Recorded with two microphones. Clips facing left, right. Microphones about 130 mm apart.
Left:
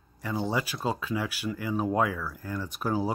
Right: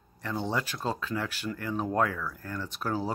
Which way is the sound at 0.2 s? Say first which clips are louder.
Left 2 dB; 5° left (ahead or behind).